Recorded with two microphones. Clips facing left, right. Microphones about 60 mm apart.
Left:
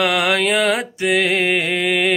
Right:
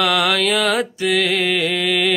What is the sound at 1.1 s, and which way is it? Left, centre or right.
Music, left.